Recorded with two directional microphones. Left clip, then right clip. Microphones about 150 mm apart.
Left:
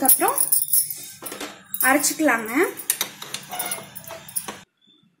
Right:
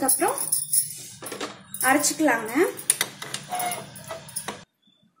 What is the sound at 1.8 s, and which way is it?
Speech, 60° left (ahead or behind).